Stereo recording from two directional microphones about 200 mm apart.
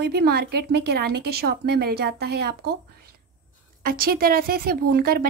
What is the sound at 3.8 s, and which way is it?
A woman's voice, 45° right (ahead or behind).